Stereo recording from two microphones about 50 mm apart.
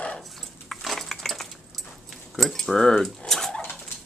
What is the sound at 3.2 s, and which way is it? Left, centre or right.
Dog, centre.